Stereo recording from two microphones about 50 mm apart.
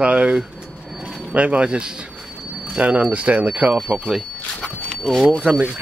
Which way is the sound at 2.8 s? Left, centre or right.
Right.